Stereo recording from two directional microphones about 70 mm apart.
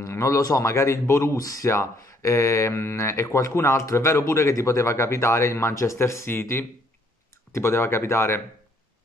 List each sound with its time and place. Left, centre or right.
0.0 s speech: left